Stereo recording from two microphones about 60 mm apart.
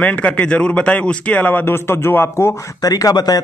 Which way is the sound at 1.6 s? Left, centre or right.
Left.